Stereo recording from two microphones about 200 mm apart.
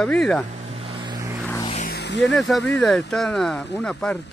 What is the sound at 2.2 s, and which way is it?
Speech, centre (ahead or behind).